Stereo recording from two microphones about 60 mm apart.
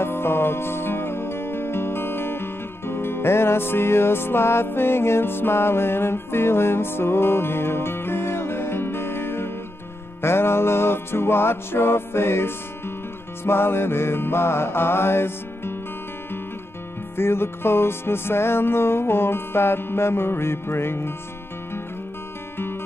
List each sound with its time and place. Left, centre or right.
0.0 s music: left
17.2 s music: left